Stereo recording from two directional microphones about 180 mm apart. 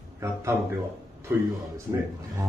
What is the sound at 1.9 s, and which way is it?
Speech, 15° right (ahead or behind).